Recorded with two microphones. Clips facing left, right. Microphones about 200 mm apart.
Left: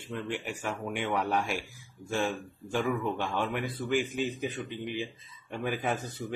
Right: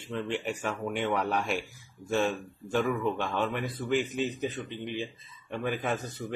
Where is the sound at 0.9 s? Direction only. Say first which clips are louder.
Right 1 dB; 10° left (ahead or behind).